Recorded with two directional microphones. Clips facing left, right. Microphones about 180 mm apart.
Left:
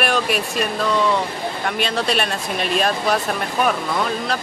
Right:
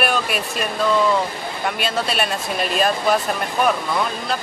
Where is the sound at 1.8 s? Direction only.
Centre (ahead or behind).